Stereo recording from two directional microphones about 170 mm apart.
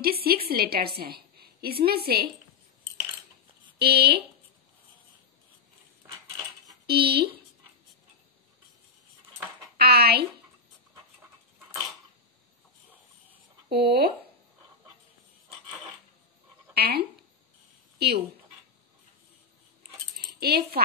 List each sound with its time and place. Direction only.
0.0 s a woman's voice: 60° right (ahead or behind)
3.7 s speech: 70° right (ahead or behind)
6.9 s speech: 70° right (ahead or behind)
9.8 s speech: 65° right (ahead or behind)
13.7 s speech: 65° right (ahead or behind)
16.7 s speech: 65° right (ahead or behind)
20.3 s speech: 65° right (ahead or behind)